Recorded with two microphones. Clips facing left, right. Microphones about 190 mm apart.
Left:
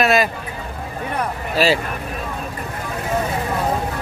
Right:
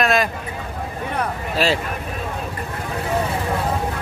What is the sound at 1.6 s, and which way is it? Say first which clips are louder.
Speech: left 3 dB; centre (ahead or behind).